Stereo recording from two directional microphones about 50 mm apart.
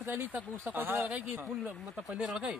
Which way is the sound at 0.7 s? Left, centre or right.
Right.